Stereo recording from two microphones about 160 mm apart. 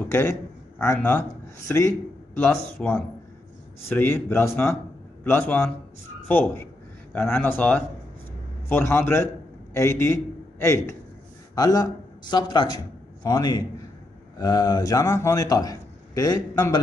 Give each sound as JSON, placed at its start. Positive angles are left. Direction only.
{"t": 0.1, "sound": "a sound", "side_deg": 15}
{"t": 0.9, "sound": "a man's voice", "side_deg": 15}
{"t": 3.9, "sound": "a man's voice", "side_deg": 15}